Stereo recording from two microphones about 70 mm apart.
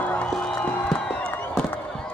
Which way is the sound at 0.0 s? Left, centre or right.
Left.